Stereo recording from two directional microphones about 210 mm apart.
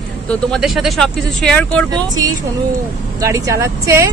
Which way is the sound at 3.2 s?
15° right (ahead or behind).